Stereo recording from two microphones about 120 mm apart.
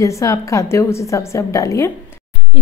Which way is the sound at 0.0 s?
25° left (ahead or behind).